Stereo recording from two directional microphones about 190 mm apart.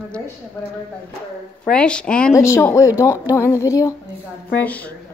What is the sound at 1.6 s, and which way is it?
A woman's voice, 5° left (ahead or behind).